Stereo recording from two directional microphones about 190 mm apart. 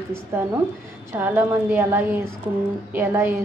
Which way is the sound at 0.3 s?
10° right (ahead or behind).